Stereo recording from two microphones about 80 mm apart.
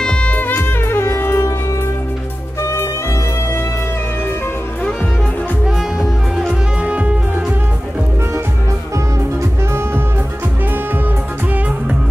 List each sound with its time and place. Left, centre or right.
0.0 s music: centre; by 1.5 s left
2.6 s music: left
6.8 s music: centre